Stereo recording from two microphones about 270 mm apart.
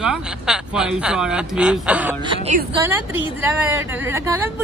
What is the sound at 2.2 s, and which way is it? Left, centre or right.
Speech, right.